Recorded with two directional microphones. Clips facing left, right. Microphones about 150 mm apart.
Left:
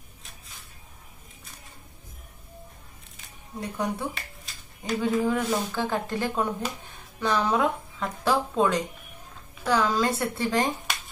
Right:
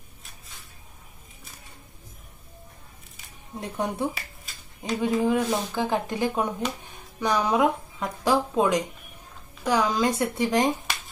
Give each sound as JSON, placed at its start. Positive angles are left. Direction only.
{"t": 3.6, "sound": "speech", "side_deg": -20}
{"t": 4.1, "sound": "a sound", "side_deg": 0}
{"t": 5.0, "sound": "speech", "side_deg": -15}